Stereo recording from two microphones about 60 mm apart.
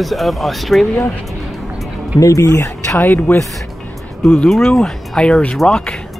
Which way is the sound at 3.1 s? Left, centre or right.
Left.